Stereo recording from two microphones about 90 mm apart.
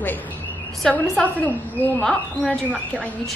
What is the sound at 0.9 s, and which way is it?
A woman's voice, 15° left (ahead or behind).